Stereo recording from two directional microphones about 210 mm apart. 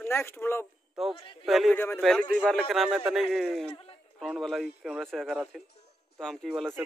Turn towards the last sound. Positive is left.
turn(degrees=0)  # may be behind; listen again after turning